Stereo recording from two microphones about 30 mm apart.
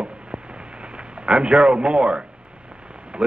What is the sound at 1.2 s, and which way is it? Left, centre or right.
Speech, right.